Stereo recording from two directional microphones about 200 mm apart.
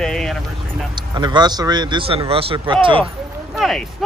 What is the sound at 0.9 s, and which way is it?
Speech, 20° right (ahead or behind).